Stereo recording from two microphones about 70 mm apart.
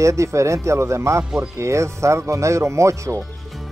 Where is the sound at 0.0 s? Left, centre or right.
Right.